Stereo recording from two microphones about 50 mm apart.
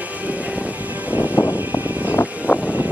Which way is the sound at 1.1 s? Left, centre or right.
Right.